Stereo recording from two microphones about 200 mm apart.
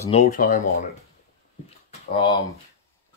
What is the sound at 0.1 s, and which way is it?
Speech, 40° left (ahead or behind).